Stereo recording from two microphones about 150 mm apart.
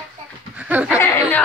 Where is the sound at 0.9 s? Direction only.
20° left (ahead or behind).